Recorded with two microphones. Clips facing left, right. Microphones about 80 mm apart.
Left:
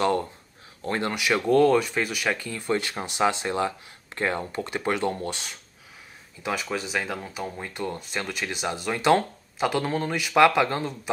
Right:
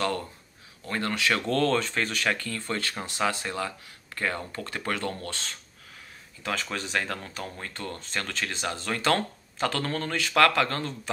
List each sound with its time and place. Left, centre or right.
0.8 s speech: left
1.1 s speech: centre